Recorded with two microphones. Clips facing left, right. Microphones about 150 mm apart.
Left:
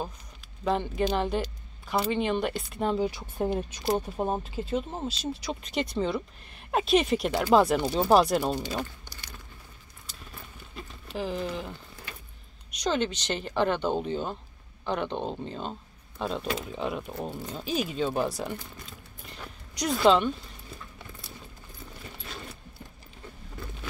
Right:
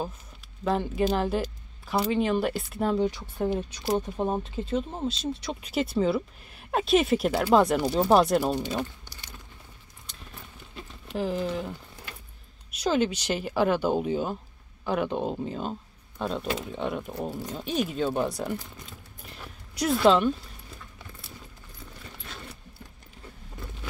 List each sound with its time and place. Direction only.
0.7 s speech: centre (ahead or behind)
3.1 s speech: 15° left (ahead or behind)
11.1 s speech: centre (ahead or behind)
12.7 s speech: 5° right (ahead or behind)